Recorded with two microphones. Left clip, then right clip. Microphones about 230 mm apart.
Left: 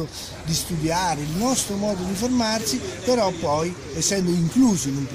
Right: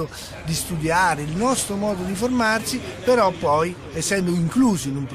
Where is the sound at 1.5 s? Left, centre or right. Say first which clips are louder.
Right 1 dB; right.